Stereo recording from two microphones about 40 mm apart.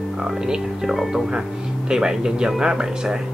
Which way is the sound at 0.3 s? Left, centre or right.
Centre.